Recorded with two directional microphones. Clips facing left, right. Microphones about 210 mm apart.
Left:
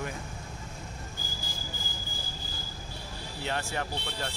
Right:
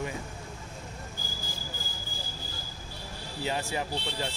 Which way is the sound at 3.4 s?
5° right (ahead or behind).